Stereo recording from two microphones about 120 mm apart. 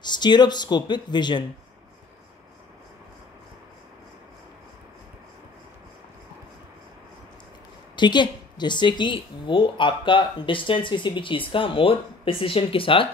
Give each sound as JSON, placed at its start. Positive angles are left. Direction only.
{"t": 0.0, "sound": "speech", "side_deg": 40}
{"t": 7.9, "sound": "a woman's voice", "side_deg": 40}